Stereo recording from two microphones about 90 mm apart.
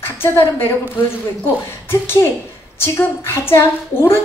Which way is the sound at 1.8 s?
25° left (ahead or behind).